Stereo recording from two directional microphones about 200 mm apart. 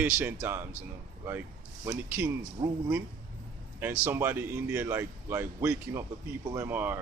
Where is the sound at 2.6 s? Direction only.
30° right (ahead or behind).